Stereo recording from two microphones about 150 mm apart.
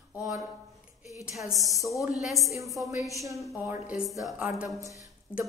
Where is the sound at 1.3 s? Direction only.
Centre (ahead or behind).